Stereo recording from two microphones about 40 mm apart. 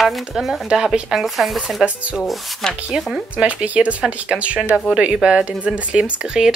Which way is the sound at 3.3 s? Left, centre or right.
Right.